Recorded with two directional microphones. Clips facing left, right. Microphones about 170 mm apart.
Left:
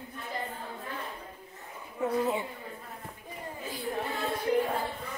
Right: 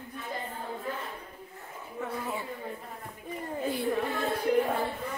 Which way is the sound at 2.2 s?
20° left (ahead or behind).